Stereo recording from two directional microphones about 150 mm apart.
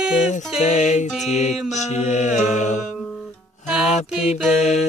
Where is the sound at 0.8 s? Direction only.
60° left (ahead or behind).